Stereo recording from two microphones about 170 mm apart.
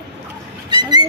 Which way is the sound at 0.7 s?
25° right (ahead or behind).